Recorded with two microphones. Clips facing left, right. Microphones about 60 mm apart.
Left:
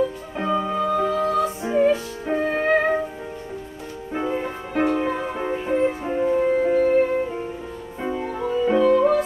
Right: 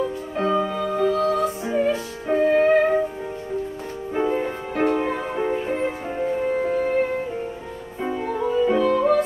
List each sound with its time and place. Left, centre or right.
0.4 s music: centre
1.4 s music: centre
4.1 s music: centre